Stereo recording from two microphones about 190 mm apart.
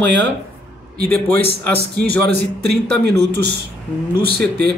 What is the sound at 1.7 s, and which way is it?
A man's voice, 60° right (ahead or behind).